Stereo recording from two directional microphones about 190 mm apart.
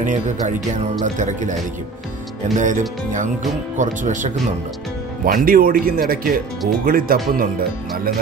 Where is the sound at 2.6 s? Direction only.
40° right (ahead or behind).